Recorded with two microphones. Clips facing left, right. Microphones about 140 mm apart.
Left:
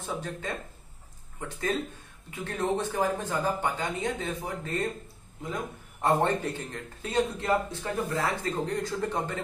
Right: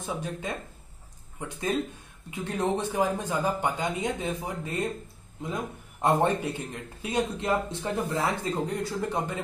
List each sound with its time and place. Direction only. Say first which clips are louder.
0.0 s a man's voice: right 1 dB; 15° right (ahead or behind)
2.4 s a man's voice: right 1 dB; 15° right (ahead or behind)